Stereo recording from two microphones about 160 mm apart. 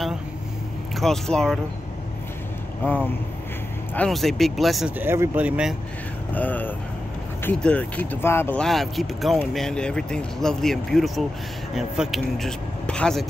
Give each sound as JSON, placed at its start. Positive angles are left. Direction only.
{"t": 0.9, "sound": "speech", "side_deg": 0}
{"t": 2.8, "sound": "speech", "side_deg": 10}
{"t": 4.9, "sound": "speech", "side_deg": -15}
{"t": 6.3, "sound": "speech", "side_deg": 10}
{"t": 8.6, "sound": "speech", "side_deg": 0}